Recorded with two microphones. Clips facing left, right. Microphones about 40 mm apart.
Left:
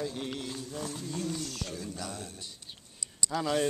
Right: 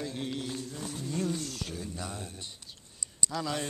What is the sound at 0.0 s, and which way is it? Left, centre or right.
Mantra, centre.